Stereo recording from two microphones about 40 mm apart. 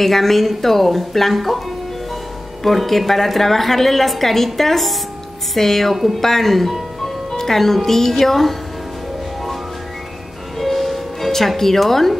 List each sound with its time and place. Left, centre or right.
0.0 s a woman's voice: centre
2.6 s a woman's voice: centre
10.6 s music: centre